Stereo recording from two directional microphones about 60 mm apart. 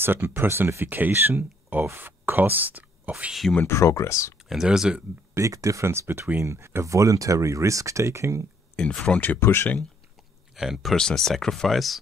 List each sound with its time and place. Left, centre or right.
0.0 s speech: right
3.6 s speech: left
4.6 s speech: centre
5.3 s speech: right
5.9 s speech: right
8.7 s speech: centre
9.4 s speech: left
10.5 s speech: centre
11.0 s speech: centre